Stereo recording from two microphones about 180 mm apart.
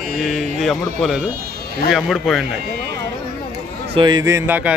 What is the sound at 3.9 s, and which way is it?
Speech, 25° right (ahead or behind).